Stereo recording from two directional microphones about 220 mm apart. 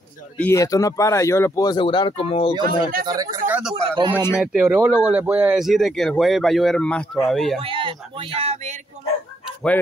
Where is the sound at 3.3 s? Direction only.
10° right (ahead or behind).